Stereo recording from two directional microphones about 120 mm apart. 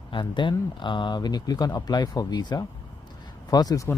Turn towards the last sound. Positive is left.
turn(degrees=35)  # may be behind; listen again after turning